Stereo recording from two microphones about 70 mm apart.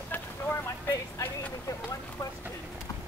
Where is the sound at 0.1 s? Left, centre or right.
Left.